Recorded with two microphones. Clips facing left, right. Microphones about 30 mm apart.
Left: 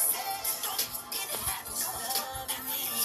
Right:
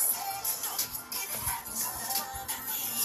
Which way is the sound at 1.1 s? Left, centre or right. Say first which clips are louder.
Even; left.